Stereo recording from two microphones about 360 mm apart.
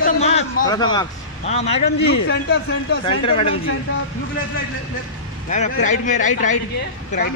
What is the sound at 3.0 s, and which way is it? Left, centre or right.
Speech, centre.